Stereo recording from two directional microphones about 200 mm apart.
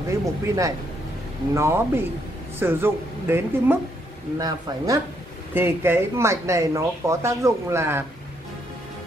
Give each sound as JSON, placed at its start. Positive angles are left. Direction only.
{"t": 0.1, "sound": "speech", "side_deg": -15}